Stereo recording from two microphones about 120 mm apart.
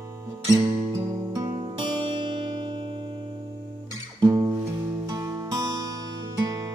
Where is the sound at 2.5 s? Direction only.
35° right (ahead or behind).